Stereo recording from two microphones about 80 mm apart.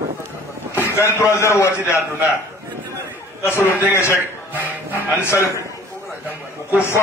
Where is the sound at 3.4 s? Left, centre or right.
Left.